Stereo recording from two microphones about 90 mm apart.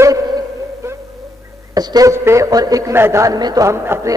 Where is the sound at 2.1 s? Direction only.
35° right (ahead or behind).